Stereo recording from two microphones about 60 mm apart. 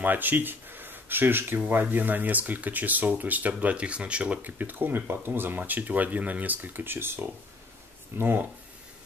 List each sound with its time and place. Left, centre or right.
0.0 s speech: right
8.2 s speech: right